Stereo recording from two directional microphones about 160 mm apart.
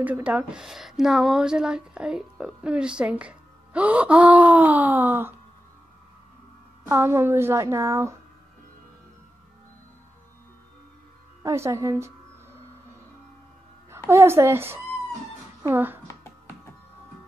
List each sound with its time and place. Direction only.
0.0 s speech: 10° right (ahead or behind)
6.9 s speech: 15° right (ahead or behind)
11.4 s speech: 15° right (ahead or behind)
13.8 s a woman's voice: 15° right (ahead or behind)